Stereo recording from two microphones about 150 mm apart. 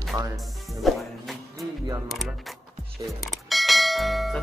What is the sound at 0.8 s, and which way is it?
Music, centre (ahead or behind).